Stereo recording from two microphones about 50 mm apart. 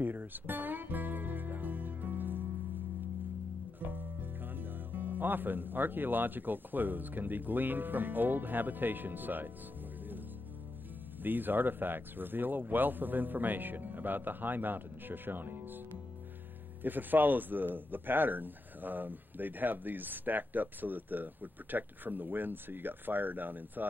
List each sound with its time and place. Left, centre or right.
0.0 s music: right
3.8 s speech: right
11.2 s speech: right
16.8 s speech: right